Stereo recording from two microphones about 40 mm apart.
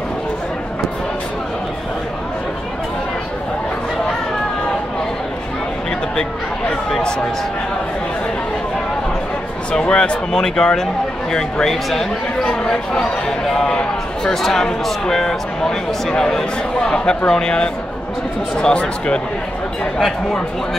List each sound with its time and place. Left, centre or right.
9.7 s speech: left